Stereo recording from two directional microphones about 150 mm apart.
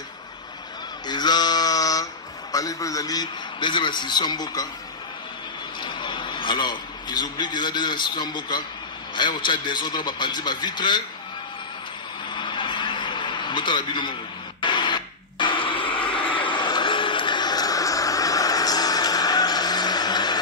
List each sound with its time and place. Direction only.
1.0 s male singing: 30° left (ahead or behind)
2.5 s a man's voice: 25° left (ahead or behind)
5.8 s a man's voice: 30° left (ahead or behind)
12.3 s a sound: 30° left (ahead or behind)